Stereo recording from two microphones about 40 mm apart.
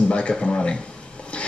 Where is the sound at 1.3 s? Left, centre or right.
Left.